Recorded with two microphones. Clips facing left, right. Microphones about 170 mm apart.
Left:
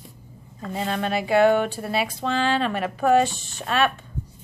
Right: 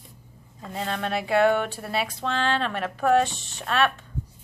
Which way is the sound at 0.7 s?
5° left (ahead or behind).